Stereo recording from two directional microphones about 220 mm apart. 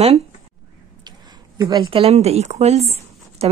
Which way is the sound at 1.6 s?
20° right (ahead or behind).